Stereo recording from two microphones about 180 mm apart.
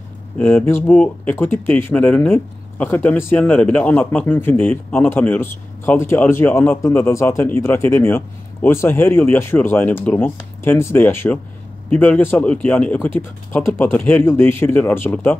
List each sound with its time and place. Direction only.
0.4 s speech: 10° left (ahead or behind)